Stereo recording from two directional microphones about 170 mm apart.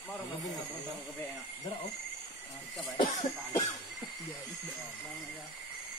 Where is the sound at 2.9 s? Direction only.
25° left (ahead or behind).